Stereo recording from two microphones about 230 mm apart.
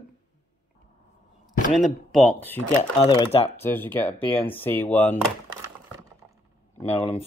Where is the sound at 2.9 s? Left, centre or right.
Left.